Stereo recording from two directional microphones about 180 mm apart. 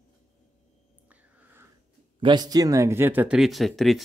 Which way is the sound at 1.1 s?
10° right (ahead or behind).